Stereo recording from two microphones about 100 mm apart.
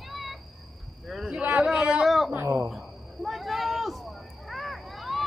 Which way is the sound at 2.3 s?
25° right (ahead or behind).